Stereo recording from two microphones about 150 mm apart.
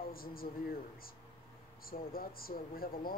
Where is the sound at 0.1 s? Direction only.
75° left (ahead or behind).